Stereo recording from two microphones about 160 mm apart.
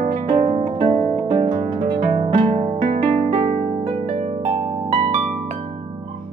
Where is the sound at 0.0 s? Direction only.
45° right (ahead or behind).